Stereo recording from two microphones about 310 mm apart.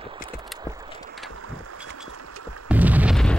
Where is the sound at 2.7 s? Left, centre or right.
Centre.